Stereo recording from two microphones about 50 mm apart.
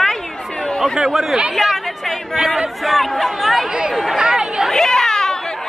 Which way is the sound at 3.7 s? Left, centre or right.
Centre.